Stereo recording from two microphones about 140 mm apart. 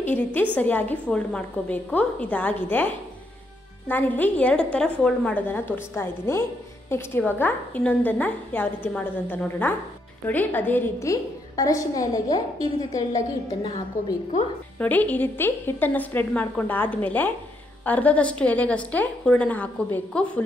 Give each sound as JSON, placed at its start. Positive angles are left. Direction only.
{"t": 0.1, "sound": "a woman's voice", "side_deg": 15}
{"t": 14.8, "sound": "a woman's voice", "side_deg": 10}